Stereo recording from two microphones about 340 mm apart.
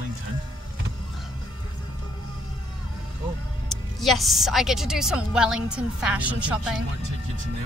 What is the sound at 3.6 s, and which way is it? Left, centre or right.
A woman's voice, centre.